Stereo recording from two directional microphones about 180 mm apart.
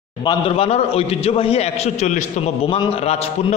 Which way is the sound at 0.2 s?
30° left (ahead or behind).